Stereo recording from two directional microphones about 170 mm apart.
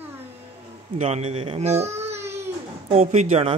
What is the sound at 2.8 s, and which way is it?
Speech, 40° right (ahead or behind).